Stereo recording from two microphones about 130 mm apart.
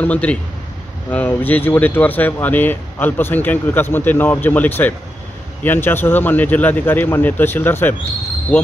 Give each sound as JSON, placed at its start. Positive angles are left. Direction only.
{"t": 0.0, "sound": "speech", "side_deg": 10}